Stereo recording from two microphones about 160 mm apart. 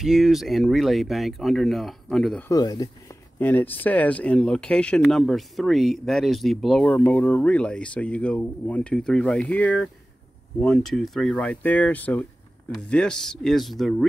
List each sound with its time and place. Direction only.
0.0 s speech: centre (ahead or behind)
2.5 s speech: 20° left (ahead or behind)
3.3 s speech: 10° left (ahead or behind)